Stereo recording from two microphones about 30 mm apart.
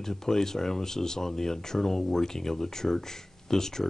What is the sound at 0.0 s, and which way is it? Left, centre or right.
Speech, centre.